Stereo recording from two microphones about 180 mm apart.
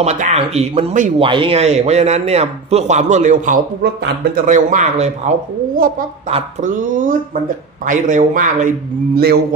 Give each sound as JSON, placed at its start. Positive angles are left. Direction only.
{"t": 0.0, "sound": "a man's voice", "side_deg": -35}
{"t": 1.1, "sound": "a man's voice", "side_deg": -30}
{"t": 3.8, "sound": "a man's voice", "side_deg": -65}
{"t": 4.5, "sound": "a man's voice", "side_deg": -45}
{"t": 5.8, "sound": "speech", "side_deg": -50}